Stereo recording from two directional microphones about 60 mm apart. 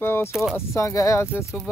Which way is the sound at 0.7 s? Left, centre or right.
Left.